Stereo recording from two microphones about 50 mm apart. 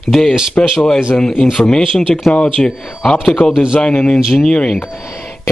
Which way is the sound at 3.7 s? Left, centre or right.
Centre.